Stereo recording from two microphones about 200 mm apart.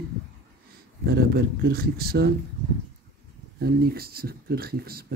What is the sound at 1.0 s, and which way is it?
Speech, 50° right (ahead or behind).